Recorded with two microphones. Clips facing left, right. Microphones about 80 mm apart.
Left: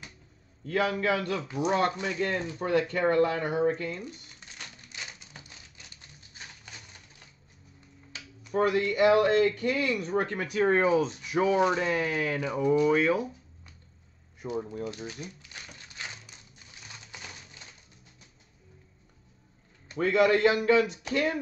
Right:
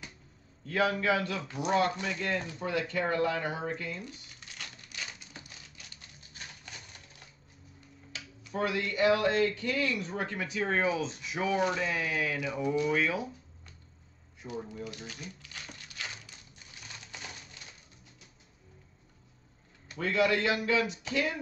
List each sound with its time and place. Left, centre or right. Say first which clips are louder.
0.7 s speech: left 1 dB; left
8.5 s speech: left 6 dB; left
11.9 s speech: left 4 dB; left
14.4 s speech: left 7 dB; left
14.9 s crumpling: left 5 dB; left
20.0 s speech: left 6 dB; left